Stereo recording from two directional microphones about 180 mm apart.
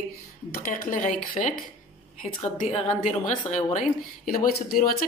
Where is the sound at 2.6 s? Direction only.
35° left (ahead or behind).